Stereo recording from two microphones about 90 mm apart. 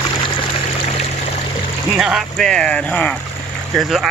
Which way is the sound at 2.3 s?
10° left (ahead or behind).